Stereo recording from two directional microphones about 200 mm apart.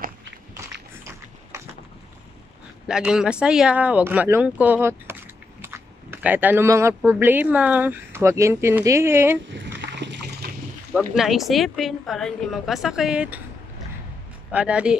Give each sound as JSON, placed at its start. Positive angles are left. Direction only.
{"t": 2.9, "sound": "speech", "side_deg": -5}
{"t": 9.5, "sound": "a sound", "side_deg": -65}
{"t": 11.1, "sound": "a woman's voice", "side_deg": 0}
{"t": 14.5, "sound": "a woman's voice", "side_deg": -5}